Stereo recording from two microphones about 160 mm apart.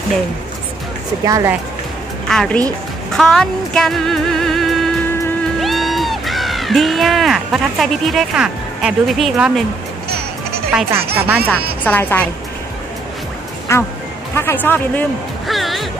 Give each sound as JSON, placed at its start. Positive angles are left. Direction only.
{"t": 1.2, "sound": "speech", "side_deg": -20}
{"t": 2.2, "sound": "music", "side_deg": 5}
{"t": 5.6, "sound": "speech", "side_deg": 0}
{"t": 11.1, "sound": "speech", "side_deg": -10}
{"t": 11.8, "sound": "speech", "side_deg": 10}
{"t": 13.7, "sound": "speech", "side_deg": 15}
{"t": 15.4, "sound": "music", "side_deg": 0}